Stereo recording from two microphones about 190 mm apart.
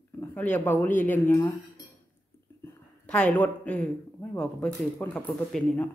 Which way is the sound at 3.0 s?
5° left (ahead or behind).